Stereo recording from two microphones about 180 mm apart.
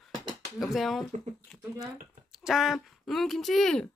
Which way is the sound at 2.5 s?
Centre (ahead or behind).